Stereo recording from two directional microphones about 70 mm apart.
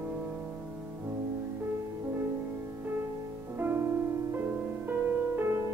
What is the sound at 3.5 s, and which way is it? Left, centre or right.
Music, right.